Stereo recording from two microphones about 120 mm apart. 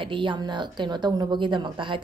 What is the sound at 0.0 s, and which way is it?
A woman's voice, 45° right (ahead or behind).